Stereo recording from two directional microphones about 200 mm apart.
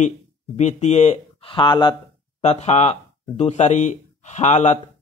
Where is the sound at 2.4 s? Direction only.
35° left (ahead or behind).